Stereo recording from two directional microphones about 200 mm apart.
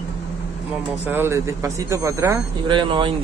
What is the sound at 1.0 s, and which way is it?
Speech, 10° right (ahead or behind).